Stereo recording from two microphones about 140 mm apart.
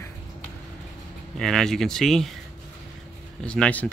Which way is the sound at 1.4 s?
5° left (ahead or behind).